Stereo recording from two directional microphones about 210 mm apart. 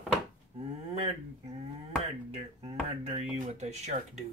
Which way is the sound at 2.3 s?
30° right (ahead or behind).